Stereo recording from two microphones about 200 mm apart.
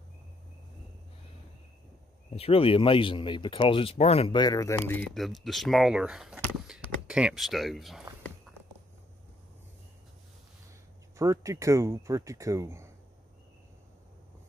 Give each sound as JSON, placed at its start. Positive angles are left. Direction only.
{"t": 2.3, "sound": "speech", "side_deg": 30}
{"t": 5.1, "sound": "speech", "side_deg": 0}
{"t": 11.1, "sound": "speech", "side_deg": -15}